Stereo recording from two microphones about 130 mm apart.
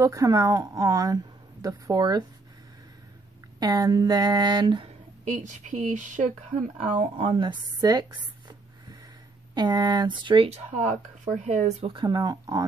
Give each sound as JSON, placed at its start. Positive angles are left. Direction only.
{"t": 0.0, "sound": "a woman's voice", "side_deg": -25}
{"t": 3.5, "sound": "speech", "side_deg": -30}
{"t": 5.2, "sound": "a woman's voice", "side_deg": -70}
{"t": 6.8, "sound": "speech", "side_deg": -60}
{"t": 7.2, "sound": "speech", "side_deg": -40}
{"t": 9.5, "sound": "speech", "side_deg": -35}
{"t": 10.5, "sound": "speech", "side_deg": -60}
{"t": 11.8, "sound": "speech", "side_deg": -40}